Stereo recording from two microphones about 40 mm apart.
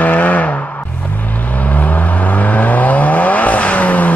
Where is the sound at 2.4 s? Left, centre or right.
Left.